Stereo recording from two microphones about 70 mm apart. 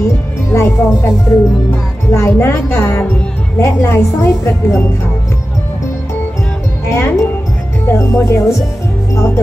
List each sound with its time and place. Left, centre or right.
0.5 s a woman's voice: left
6.9 s speech: left